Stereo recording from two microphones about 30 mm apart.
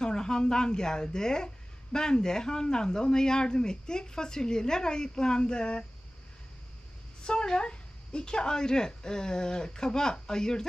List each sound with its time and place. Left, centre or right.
0.0 s a woman's voice: left
7.2 s a woman's voice: left